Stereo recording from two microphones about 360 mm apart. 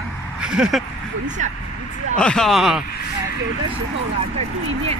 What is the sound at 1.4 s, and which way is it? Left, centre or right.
Speech, centre.